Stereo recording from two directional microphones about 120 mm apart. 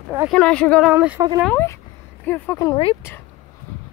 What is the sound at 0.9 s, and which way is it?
Speech, 15° right (ahead or behind).